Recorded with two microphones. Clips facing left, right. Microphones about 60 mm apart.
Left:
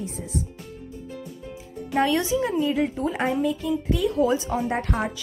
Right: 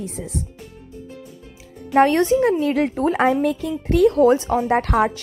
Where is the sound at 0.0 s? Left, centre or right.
Right.